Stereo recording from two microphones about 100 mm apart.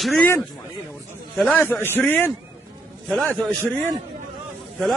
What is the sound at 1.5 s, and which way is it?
Speech, 15° left (ahead or behind).